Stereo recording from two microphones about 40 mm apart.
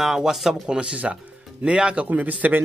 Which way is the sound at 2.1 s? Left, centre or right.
Right.